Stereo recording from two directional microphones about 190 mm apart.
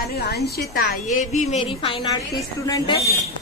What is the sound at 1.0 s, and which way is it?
Speech, 40° left (ahead or behind).